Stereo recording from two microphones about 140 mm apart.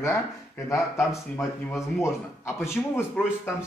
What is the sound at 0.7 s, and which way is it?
Speech, 20° left (ahead or behind).